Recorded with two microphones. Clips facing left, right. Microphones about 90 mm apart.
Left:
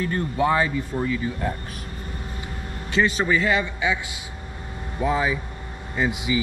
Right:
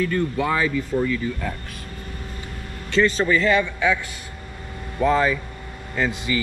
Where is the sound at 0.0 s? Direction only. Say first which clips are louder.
Right 1 dB; 25° left (ahead or behind).